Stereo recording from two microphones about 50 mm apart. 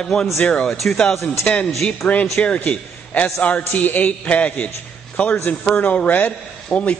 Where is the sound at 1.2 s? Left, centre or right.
Centre.